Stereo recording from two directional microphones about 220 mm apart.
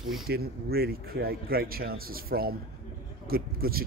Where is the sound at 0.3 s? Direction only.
45° right (ahead or behind).